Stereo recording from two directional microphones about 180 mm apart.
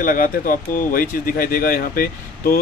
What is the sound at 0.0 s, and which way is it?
Speech, 50° left (ahead or behind).